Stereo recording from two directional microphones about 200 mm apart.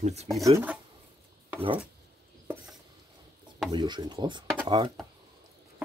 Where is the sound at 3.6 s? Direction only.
20° right (ahead or behind).